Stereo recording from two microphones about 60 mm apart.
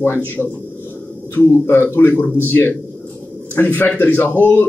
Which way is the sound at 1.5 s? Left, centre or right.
Left.